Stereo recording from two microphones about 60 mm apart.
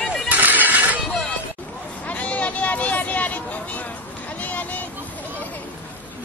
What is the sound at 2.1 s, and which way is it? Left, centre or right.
Vehicle, left.